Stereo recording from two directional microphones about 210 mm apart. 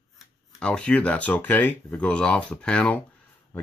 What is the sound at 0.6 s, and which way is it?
Speech, 5° left (ahead or behind).